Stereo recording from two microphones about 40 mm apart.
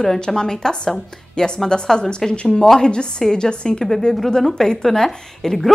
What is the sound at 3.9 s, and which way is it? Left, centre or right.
A woman's voice, centre.